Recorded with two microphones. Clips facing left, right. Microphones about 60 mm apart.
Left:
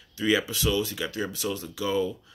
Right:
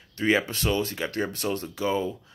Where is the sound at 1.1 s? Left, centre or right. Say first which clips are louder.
Right 2 dB; right.